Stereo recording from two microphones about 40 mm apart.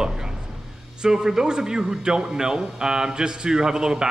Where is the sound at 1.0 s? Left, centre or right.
Centre.